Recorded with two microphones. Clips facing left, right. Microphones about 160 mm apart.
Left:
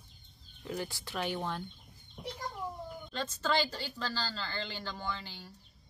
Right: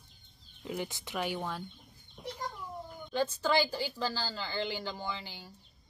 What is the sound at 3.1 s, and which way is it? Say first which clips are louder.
Speech: right 4 dB; 10° right (ahead or behind).